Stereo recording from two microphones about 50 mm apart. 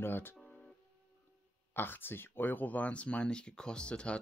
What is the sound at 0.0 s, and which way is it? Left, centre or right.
Speech, left.